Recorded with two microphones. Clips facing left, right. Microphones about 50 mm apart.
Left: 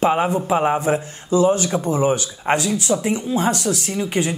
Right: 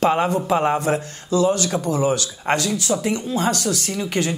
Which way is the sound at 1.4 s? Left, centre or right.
Left.